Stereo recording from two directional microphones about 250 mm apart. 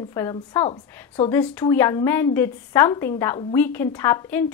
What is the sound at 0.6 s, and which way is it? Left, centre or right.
Speech, left.